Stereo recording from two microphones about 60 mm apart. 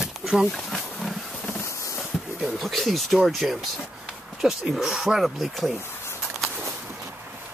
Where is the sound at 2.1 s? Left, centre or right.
Centre.